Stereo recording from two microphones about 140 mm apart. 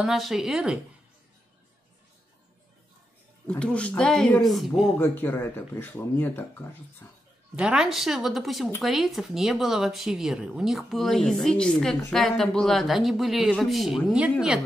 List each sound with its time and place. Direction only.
0.0 s speech: centre (ahead or behind)
3.4 s speech: 10° left (ahead or behind)
4.9 s speech: 15° left (ahead or behind)
7.5 s speech: 5° right (ahead or behind)